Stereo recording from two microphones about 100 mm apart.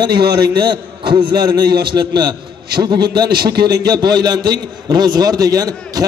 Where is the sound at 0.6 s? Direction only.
55° right (ahead or behind).